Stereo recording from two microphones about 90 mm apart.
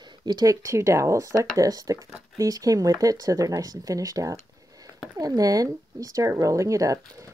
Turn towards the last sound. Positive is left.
turn(degrees=-35)  # may be behind; listen again after turning